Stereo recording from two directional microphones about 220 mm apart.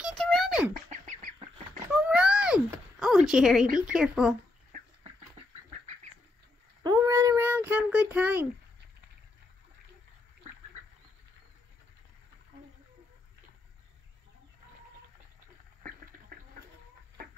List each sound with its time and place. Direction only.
0.2 s scratch: centre (ahead or behind)
0.8 s duck: 35° right (ahead or behind)
2.0 s a sound: 5° right (ahead or behind)
3.6 s a woman's voice: 40° right (ahead or behind)
3.9 s speech: 5° right (ahead or behind)
4.7 s a sound: 40° right (ahead or behind)
6.8 s child singing: 15° right (ahead or behind)